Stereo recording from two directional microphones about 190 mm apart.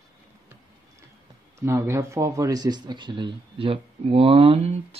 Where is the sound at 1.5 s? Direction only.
15° right (ahead or behind).